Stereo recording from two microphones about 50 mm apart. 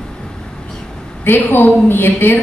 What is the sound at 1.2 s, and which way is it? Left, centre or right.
A woman's voice, left.